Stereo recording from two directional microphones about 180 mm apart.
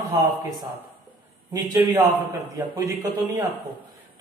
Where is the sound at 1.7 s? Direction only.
15° right (ahead or behind).